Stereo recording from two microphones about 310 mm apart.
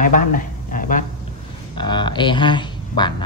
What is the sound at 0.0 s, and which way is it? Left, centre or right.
Speech, left.